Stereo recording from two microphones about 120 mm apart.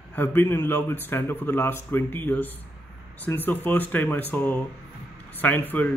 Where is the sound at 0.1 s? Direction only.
15° left (ahead or behind).